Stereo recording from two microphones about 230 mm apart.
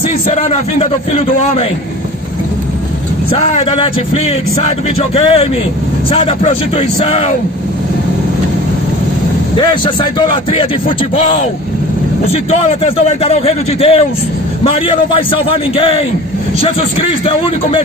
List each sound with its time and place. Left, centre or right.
0.3 s a man's voice: left
3.3 s a man's voice: left
9.6 s a man's voice: centre
12.3 s a man's voice: left
17.2 s a man's voice: left